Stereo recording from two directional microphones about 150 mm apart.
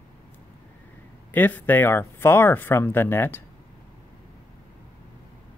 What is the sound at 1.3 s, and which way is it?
Speech, 10° left (ahead or behind).